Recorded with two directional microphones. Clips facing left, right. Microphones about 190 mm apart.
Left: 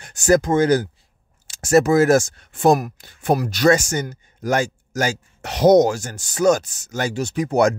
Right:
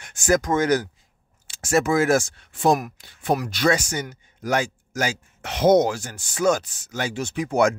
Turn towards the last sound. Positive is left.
turn(degrees=40)  # may be behind; listen again after turning